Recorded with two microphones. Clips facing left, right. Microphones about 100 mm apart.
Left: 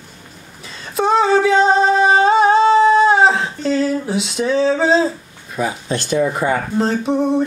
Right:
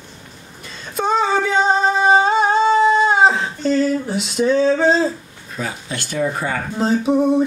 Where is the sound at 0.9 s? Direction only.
Centre (ahead or behind).